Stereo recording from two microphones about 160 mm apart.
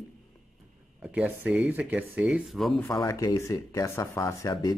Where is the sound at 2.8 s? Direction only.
20° left (ahead or behind).